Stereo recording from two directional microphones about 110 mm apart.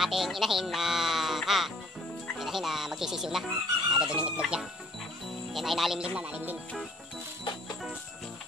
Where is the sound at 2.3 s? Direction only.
5° right (ahead or behind).